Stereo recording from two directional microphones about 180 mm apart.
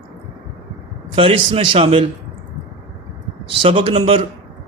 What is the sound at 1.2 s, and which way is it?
Speech, 30° right (ahead or behind).